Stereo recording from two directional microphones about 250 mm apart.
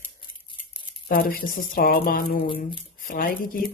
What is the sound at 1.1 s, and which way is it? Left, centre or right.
Speech, left.